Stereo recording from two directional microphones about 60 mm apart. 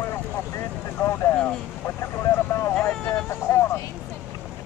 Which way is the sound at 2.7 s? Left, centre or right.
Centre.